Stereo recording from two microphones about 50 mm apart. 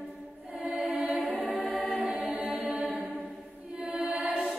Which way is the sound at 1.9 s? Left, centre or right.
Right.